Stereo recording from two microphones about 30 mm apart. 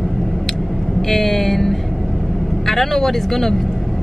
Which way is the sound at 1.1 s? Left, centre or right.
Centre.